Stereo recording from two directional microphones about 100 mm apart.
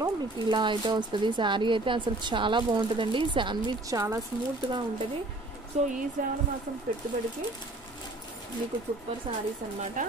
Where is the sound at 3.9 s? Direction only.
35° right (ahead or behind).